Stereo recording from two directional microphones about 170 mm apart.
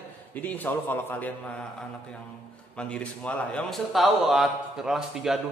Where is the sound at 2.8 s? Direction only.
5° left (ahead or behind).